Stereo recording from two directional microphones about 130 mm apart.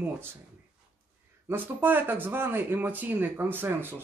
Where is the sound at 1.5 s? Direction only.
15° right (ahead or behind).